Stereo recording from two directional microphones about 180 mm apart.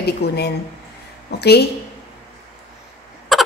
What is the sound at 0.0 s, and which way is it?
Speech, 65° left (ahead or behind).